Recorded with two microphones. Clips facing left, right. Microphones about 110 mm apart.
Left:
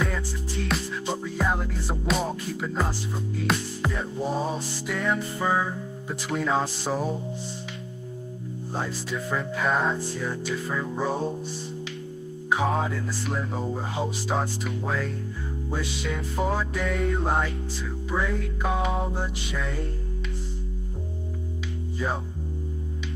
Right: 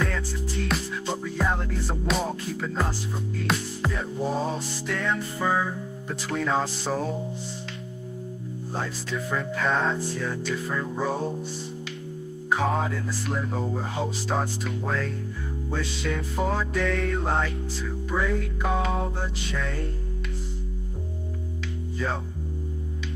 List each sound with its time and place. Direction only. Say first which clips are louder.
0.7 s music: left 1 dB; centre (ahead or behind)
2.5 s speech: even; 5° left (ahead or behind)
3.3 s music: left 1 dB; centre (ahead or behind)
4.2 s speech: even; 15° left (ahead or behind)
5.4 s speech: right 2 dB; 15° left (ahead or behind)
6.3 s music: even; 5° left (ahead or behind)
6.6 s speech: even; 15° left (ahead or behind)
9.1 s music: right 1 dB; 5° left (ahead or behind)
10.1 s speech: even; 15° left (ahead or behind)
12.6 s music: even; centre (ahead or behind)
13.4 s speech: right 1 dB; 15° left (ahead or behind)
15.7 s speech: right 1 dB; 10° left (ahead or behind)
17.1 s speech: left 1 dB; 15° left (ahead or behind)
19.5 s music: right 1 dB; centre (ahead or behind)